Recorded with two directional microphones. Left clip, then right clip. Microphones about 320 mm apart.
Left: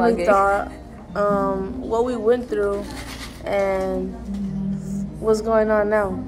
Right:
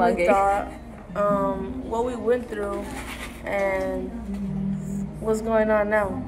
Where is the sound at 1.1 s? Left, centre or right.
Centre.